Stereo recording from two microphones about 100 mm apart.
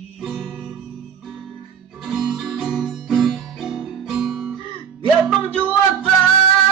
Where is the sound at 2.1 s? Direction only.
5° right (ahead or behind).